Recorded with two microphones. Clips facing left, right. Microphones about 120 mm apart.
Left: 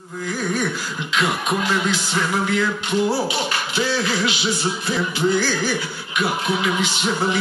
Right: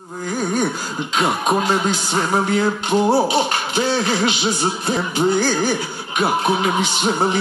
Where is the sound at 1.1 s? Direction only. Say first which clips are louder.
Right 3 dB; 40° right (ahead or behind).